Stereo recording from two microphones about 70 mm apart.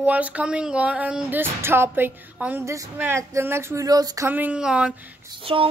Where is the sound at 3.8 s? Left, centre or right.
Right.